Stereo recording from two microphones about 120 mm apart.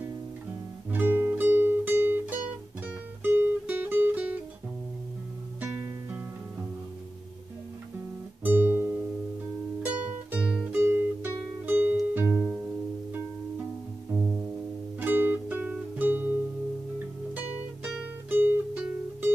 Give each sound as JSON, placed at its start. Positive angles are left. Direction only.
{"t": 0.9, "sound": "music", "side_deg": -15}
{"t": 5.6, "sound": "music", "side_deg": -15}
{"t": 8.5, "sound": "music", "side_deg": -15}
{"t": 14.1, "sound": "music", "side_deg": -10}
{"t": 18.3, "sound": "music", "side_deg": -15}